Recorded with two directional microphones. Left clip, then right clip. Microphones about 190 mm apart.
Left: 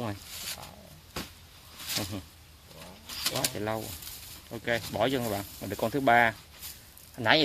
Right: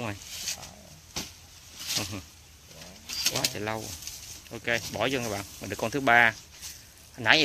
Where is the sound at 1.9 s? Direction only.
5° left (ahead or behind).